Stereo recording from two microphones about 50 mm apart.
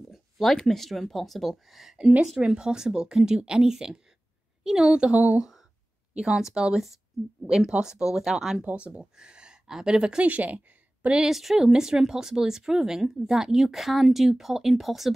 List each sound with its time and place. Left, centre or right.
0.1 s a sound: centre
0.6 s speech: centre
2.4 s speech: centre
5.1 s speech: right
6.1 s speech: centre
8.6 s speech: right
10.2 s a woman's voice: right
11.1 s speech: centre